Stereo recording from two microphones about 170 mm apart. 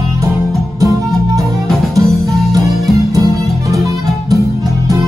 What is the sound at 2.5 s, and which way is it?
Music, 20° right (ahead or behind).